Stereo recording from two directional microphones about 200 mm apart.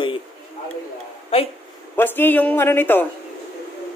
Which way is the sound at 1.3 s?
30° left (ahead or behind).